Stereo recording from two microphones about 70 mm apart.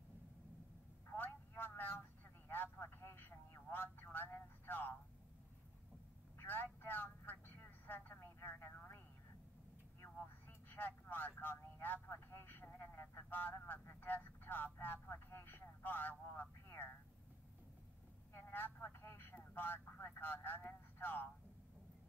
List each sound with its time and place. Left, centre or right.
1.1 s telephone: left
6.3 s vehicle: left
10.0 s vehicle: left
18.3 s telephone: left